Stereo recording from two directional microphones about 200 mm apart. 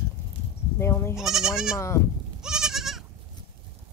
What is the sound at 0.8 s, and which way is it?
Speech, 15° left (ahead or behind).